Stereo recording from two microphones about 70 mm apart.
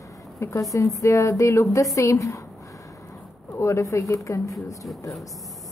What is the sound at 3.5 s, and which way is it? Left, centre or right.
A woman's voice, left.